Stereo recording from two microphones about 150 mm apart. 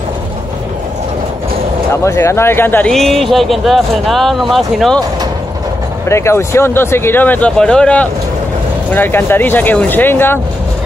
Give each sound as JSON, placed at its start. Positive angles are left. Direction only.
{"t": 2.0, "sound": "speech", "side_deg": 20}
{"t": 2.9, "sound": "speech", "side_deg": 0}
{"t": 6.0, "sound": "speech", "side_deg": 20}